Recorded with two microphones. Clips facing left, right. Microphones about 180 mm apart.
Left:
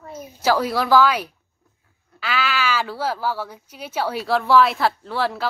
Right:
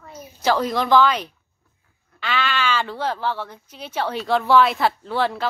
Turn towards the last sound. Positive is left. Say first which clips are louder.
# right 1 dB
turn(degrees=0)  # may be behind; listen again after turning